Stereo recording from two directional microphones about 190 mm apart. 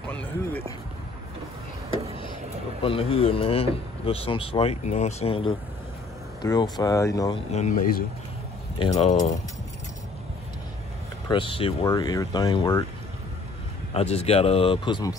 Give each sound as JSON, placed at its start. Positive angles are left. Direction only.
{"t": 0.1, "sound": "run", "side_deg": 10}
{"t": 1.9, "sound": "a sound", "side_deg": 30}
{"t": 2.8, "sound": "speech", "side_deg": 30}
{"t": 7.5, "sound": "speech", "side_deg": 40}
{"t": 8.7, "sound": "speech", "side_deg": 30}
{"t": 11.2, "sound": "speech", "side_deg": 25}
{"t": 13.9, "sound": "speech", "side_deg": 35}